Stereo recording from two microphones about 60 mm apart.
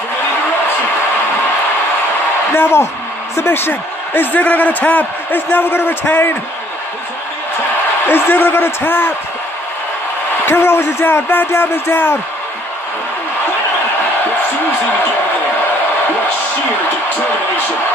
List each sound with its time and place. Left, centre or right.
2.5 s a man's voice: left
8.1 s a man's voice: left
10.4 s a man's voice: left